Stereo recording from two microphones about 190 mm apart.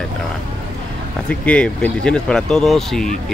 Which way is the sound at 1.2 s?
5° left (ahead or behind).